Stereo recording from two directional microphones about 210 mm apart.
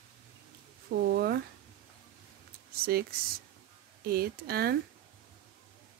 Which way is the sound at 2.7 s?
45° right (ahead or behind).